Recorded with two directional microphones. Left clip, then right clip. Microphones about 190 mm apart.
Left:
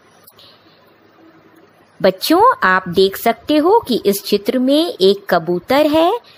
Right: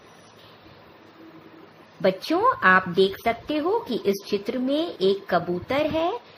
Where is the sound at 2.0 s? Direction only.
50° left (ahead or behind).